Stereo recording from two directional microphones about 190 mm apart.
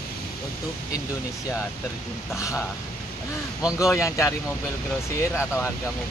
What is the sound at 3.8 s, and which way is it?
Speech, 15° left (ahead or behind).